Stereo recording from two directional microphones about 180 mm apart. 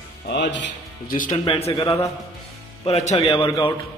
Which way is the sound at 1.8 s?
15° left (ahead or behind).